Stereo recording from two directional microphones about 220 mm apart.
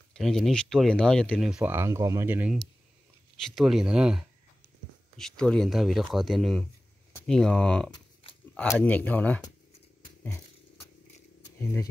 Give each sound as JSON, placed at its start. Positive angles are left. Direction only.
{"t": 0.1, "sound": "speech", "side_deg": 0}
{"t": 7.9, "sound": "a sound", "side_deg": 25}
{"t": 8.5, "sound": "speech", "side_deg": 5}
{"t": 11.6, "sound": "speech", "side_deg": 10}